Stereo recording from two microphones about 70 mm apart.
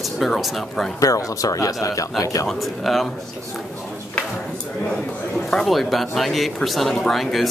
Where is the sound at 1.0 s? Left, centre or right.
Left.